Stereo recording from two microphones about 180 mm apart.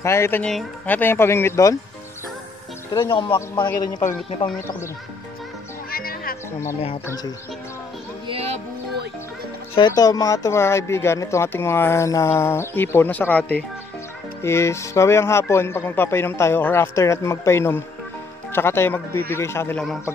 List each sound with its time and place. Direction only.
0.0 s speech: 15° left (ahead or behind)
2.9 s speech: 25° left (ahead or behind)
5.9 s music: 55° left (ahead or behind)
9.8 s speech: 20° left (ahead or behind)